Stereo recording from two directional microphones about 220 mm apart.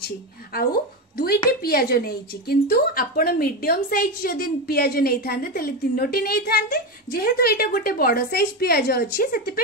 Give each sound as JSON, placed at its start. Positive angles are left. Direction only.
{"t": 0.5, "sound": "a woman's voice", "side_deg": 45}